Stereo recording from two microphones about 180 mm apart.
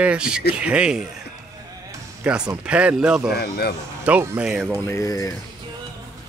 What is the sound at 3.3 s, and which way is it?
Speech, 60° left (ahead or behind).